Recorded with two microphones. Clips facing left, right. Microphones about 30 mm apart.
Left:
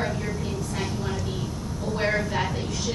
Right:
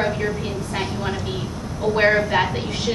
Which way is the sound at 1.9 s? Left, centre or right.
Right.